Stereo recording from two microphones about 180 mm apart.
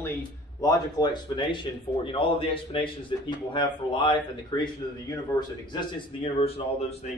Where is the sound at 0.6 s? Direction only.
25° left (ahead or behind).